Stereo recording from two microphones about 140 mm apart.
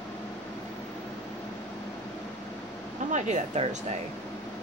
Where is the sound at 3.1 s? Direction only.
60° right (ahead or behind).